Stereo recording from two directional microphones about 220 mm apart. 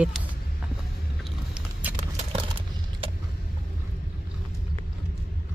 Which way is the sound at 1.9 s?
25° right (ahead or behind).